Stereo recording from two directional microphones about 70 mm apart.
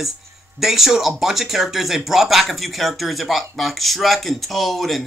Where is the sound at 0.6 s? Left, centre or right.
Centre.